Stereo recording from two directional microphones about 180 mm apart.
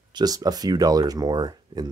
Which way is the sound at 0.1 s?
20° right (ahead or behind).